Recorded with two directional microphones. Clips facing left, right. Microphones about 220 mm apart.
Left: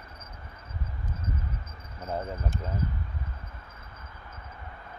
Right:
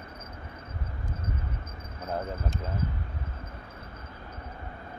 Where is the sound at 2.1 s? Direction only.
Centre (ahead or behind).